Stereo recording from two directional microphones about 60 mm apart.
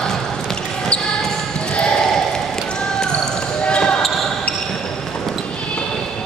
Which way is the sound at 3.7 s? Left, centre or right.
Centre.